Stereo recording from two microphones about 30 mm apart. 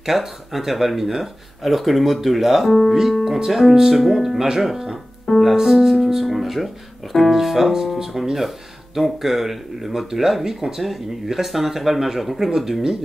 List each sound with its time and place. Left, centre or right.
0.0 s speech: centre
3.3 s speech: centre